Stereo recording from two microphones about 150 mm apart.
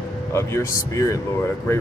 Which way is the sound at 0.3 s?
15° left (ahead or behind).